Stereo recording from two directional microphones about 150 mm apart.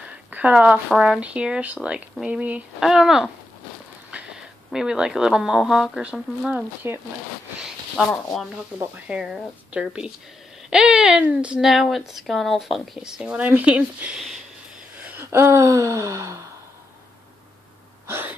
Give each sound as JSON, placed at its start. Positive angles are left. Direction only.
{"t": 0.0, "sound": "speech", "side_deg": -10}
{"t": 4.6, "sound": "speech", "side_deg": -5}
{"t": 7.9, "sound": "speech", "side_deg": 5}
{"t": 15.0, "sound": "gasp", "side_deg": -10}
{"t": 18.0, "sound": "a sound", "side_deg": -15}